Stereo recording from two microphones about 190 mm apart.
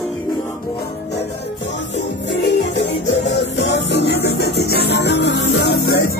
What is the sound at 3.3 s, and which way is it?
Music, 65° left (ahead or behind).